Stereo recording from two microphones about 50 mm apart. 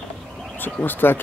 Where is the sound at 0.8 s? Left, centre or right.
Left.